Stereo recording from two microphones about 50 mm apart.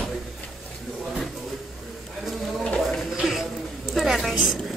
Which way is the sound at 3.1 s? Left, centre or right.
Centre.